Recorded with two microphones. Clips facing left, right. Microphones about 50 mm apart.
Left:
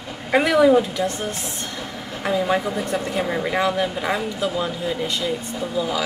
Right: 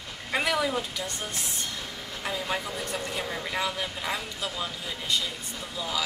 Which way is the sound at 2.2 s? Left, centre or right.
Centre.